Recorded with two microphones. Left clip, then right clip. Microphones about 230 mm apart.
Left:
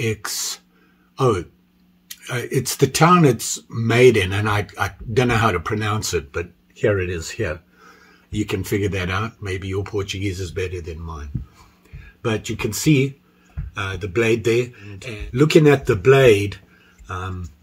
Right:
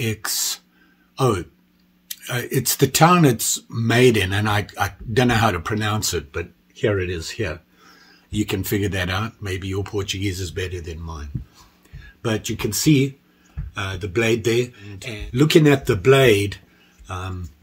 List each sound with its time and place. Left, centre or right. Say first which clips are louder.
0.0 s speech: even; centre
8.3 s speech: even; centre